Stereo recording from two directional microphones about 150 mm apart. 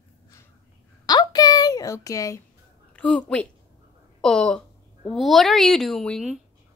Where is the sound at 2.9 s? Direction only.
5° left (ahead or behind).